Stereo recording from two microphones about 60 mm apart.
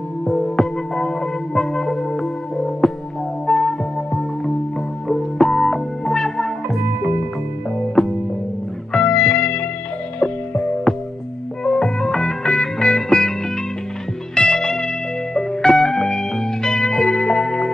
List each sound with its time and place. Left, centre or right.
0.2 s music: centre
8.0 s music: centre
8.9 s music: centre
14.3 s music: centre